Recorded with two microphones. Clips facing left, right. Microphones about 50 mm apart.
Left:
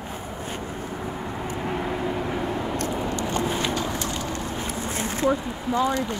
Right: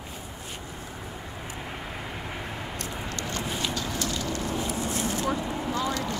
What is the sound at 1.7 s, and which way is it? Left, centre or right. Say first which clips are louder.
Vehicle: left 10 dB; left.